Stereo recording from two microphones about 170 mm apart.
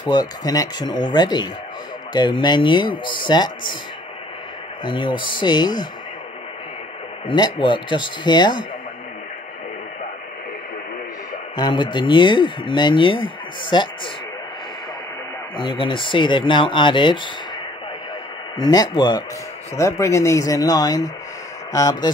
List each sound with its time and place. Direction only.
0.1 s speech: 20° left (ahead or behind)
4.8 s speech: 30° left (ahead or behind)
7.2 s speech: 30° left (ahead or behind)
11.5 s speech: 25° left (ahead or behind)
15.5 s speech: 30° left (ahead or behind)
18.6 s speech: 25° left (ahead or behind)